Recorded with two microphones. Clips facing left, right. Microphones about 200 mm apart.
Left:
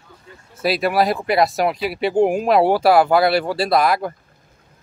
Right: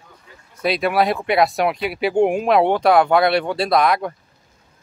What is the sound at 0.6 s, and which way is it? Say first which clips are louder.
Speech: even; 5° left (ahead or behind).